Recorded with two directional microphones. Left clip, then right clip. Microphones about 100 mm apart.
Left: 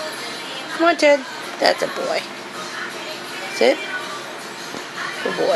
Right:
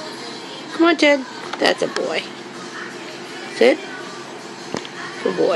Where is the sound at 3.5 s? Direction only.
15° left (ahead or behind).